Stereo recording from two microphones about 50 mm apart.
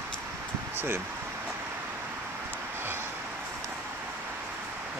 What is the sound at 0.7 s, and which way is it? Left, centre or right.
Speech, right.